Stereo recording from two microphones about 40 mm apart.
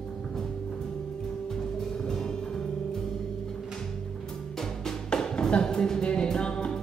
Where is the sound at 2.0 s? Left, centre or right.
Centre.